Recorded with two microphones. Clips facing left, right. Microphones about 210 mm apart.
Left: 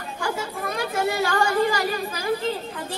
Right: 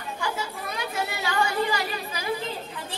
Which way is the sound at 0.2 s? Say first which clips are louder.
Left 5 dB; 50° left (ahead or behind).